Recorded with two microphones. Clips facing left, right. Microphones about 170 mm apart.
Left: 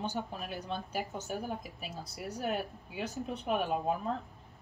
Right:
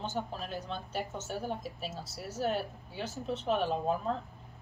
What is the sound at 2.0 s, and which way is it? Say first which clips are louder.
Speech: left 1 dB; 5° right (ahead or behind).